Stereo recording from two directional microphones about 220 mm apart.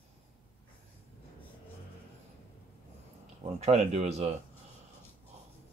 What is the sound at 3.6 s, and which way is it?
Speech, 30° right (ahead or behind).